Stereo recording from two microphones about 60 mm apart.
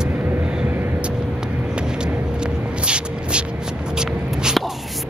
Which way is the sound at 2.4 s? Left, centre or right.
Centre.